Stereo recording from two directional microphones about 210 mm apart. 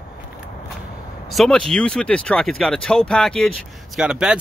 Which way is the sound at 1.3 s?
Centre (ahead or behind).